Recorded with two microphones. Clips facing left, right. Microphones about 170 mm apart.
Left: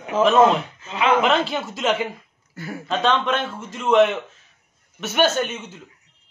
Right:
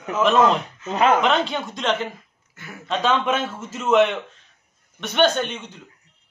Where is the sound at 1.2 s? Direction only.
5° left (ahead or behind).